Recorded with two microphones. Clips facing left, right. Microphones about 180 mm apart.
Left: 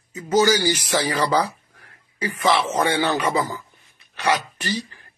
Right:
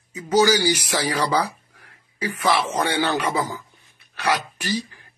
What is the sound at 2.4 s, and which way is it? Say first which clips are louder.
Speech: left 2 dB; 5° right (ahead or behind).